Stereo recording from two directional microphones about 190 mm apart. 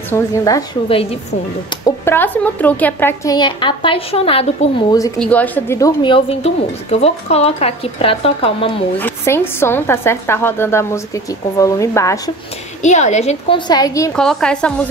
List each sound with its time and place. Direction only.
0.1 s a woman's voice: 15° left (ahead or behind)
1.9 s a woman's voice: 10° left (ahead or behind)
3.3 s a woman's voice: 25° left (ahead or behind)
5.2 s a woman's voice: 10° left (ahead or behind); by 8.7 s 30° left (ahead or behind)
8.9 s a woman's voice: 10° left (ahead or behind)
12.8 s a woman's voice: 40° left (ahead or behind)
13.7 s a woman's voice: 20° left (ahead or behind)
14.1 s a woman's voice: 5° left (ahead or behind)